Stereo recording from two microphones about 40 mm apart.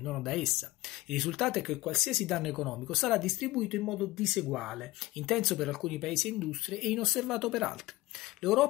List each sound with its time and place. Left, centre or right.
0.0 s speech: centre